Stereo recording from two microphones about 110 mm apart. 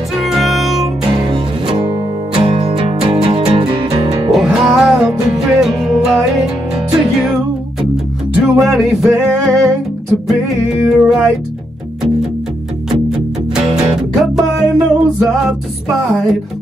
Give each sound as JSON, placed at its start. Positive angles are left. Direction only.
{"t": 0.2, "sound": "music", "side_deg": 0}
{"t": 1.0, "sound": "music", "side_deg": -45}
{"t": 4.3, "sound": "music", "side_deg": 0}
{"t": 13.6, "sound": "music", "side_deg": -5}